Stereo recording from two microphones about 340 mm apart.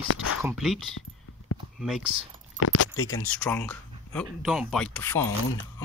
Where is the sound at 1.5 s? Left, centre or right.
Left.